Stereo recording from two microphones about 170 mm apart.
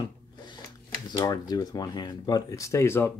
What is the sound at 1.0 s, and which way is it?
Speech, 25° left (ahead or behind).